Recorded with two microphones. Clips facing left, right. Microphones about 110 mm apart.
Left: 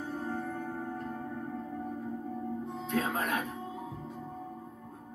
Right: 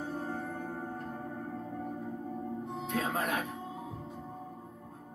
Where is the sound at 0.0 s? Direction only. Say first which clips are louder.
Left 1 dB; 30° right (ahead or behind).